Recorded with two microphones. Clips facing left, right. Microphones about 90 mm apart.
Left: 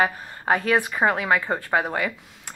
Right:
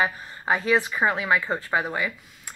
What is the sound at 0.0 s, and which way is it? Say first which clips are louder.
Speech: left 3 dB; 55° left (ahead or behind).